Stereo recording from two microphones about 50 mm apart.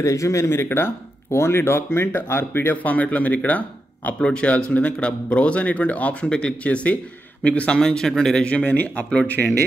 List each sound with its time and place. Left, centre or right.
0.0 s speech: left
0.7 s speech: left
2.7 s speech: left
4.3 s a man's voice: centre
7.7 s speech: centre
8.6 s speech: left